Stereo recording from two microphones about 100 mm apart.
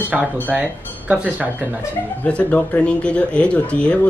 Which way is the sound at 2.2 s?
15° left (ahead or behind).